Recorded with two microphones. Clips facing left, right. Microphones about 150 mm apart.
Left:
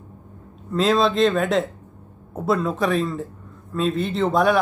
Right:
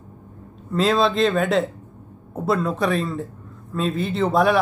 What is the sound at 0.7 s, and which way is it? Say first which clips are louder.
A man's voice: even; centre (ahead or behind).